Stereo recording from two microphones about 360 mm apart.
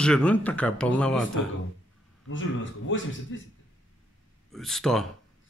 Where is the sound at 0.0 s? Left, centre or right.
Centre.